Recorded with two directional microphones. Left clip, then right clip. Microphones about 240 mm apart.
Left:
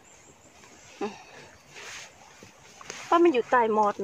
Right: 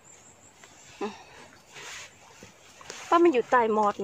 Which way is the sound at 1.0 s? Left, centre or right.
Centre.